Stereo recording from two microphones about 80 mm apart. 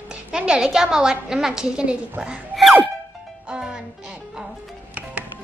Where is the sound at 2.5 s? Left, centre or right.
Centre.